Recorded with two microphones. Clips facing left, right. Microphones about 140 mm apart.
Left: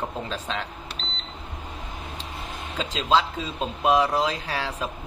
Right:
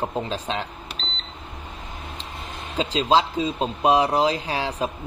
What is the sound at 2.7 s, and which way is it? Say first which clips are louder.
Speech: right 3 dB; 35° right (ahead or behind).